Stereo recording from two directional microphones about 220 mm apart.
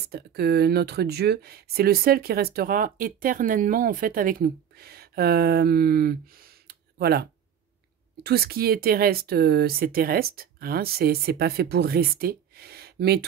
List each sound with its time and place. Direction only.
0.0 s speech: 45° right (ahead or behind)